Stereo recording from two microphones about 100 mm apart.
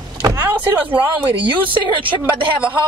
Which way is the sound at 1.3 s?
55° right (ahead or behind).